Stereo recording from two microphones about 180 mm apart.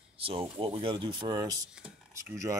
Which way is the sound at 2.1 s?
15° right (ahead or behind).